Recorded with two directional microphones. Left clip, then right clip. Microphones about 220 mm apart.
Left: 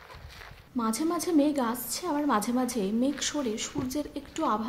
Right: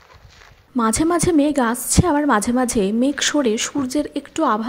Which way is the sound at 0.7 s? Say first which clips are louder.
Right 11 dB; 35° right (ahead or behind).